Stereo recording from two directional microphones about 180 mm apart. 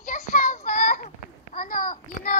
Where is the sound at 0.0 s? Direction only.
50° left (ahead or behind).